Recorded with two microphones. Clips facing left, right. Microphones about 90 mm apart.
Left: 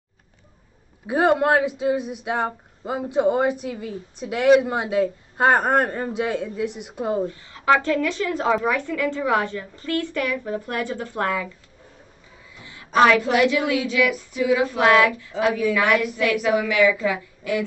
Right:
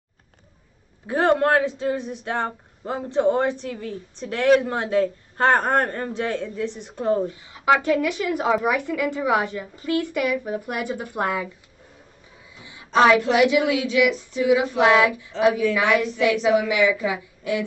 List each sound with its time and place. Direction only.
1.0 s speech: 10° left (ahead or behind)
7.2 s a woman's voice: 15° right (ahead or behind)
12.5 s a sound: 20° right (ahead or behind)
13.3 s a woman's voice: 15° right (ahead or behind)